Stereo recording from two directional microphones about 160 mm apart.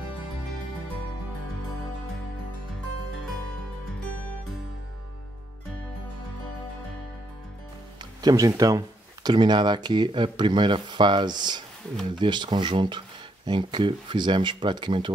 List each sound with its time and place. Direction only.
8.0 s speech: 25° right (ahead or behind)